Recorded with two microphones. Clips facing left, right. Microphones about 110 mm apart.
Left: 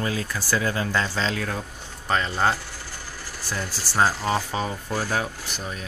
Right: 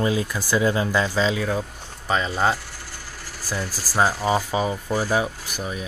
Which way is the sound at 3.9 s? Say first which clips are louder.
Right 2 dB; 10° right (ahead or behind).